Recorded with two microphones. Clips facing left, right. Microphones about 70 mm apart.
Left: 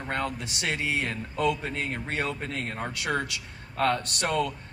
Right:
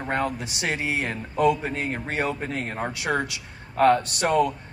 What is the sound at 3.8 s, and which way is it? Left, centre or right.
Speech, centre.